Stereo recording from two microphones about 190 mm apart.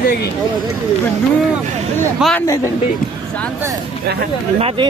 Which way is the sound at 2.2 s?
Centre (ahead or behind).